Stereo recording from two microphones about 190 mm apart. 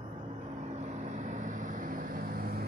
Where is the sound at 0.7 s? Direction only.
40° right (ahead or behind).